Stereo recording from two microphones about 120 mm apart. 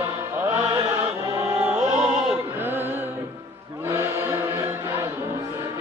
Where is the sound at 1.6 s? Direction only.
10° right (ahead or behind).